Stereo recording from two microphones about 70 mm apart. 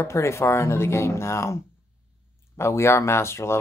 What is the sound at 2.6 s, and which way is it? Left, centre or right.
Speech, left.